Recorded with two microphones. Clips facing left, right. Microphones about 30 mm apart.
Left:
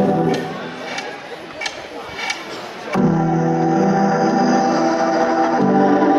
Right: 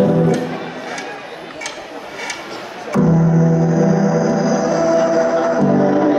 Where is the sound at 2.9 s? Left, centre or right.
Left.